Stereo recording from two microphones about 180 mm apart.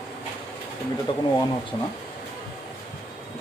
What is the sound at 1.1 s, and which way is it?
Speech, 25° left (ahead or behind).